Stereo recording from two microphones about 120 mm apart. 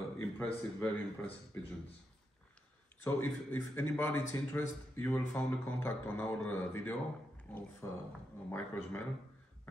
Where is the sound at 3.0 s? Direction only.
15° left (ahead or behind).